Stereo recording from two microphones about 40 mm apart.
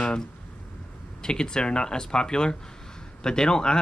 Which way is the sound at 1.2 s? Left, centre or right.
Centre.